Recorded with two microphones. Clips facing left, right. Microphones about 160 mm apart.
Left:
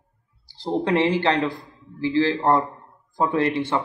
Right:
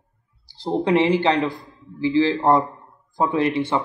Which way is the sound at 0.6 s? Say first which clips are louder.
Right 2 dB; 15° right (ahead or behind).